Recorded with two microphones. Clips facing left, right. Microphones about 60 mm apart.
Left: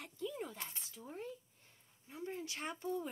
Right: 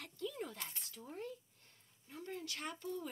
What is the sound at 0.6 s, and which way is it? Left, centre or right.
Speech, left.